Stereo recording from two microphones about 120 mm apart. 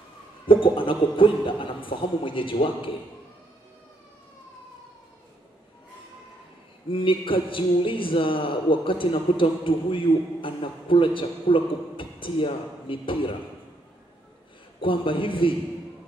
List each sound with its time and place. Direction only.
0.5 s speech: 45° left (ahead or behind)
6.9 s speech: 45° left (ahead or behind)
14.8 s speech: 45° left (ahead or behind)